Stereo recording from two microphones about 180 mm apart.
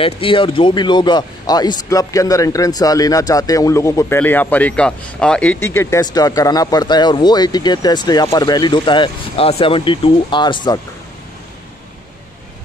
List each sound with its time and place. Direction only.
0.0 s a man's voice: 30° left (ahead or behind)